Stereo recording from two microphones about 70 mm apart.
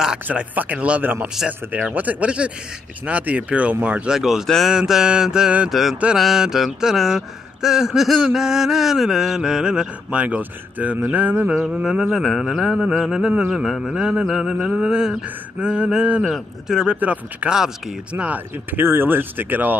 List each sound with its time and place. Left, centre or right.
0.3 s speech: right
1.4 s mantra: centre
2.0 s speech: right
4.1 s speech: centre
5.7 s mantra: centre
6.1 s speech: centre; by 11.4 s right
11.4 s speech: centre
13.5 s mantra: centre
13.9 s speech: centre
14.2 s mantra: centre
14.8 s speech: centre
16.9 s speech: right